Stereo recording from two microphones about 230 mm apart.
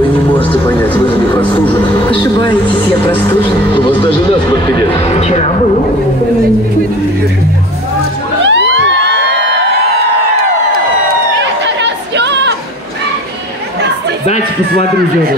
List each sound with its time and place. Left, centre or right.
0.7 s speech: centre
2.0 s speech: left
8.5 s music: right
11.6 s chatter: right